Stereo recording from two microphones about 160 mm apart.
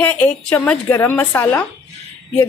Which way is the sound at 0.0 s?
10° left (ahead or behind).